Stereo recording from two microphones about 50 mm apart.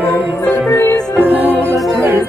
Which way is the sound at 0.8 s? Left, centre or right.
Left.